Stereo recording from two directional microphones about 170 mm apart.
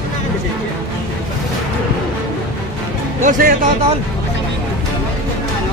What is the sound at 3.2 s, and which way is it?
Speech, 55° right (ahead or behind).